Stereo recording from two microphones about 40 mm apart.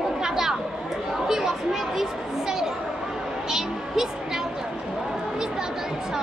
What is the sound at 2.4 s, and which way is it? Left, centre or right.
Chatter, centre.